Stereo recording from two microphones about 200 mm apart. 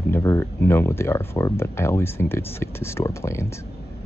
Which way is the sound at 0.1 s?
15° left (ahead or behind).